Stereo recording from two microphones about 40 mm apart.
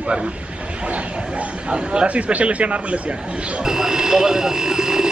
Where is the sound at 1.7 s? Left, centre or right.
Right.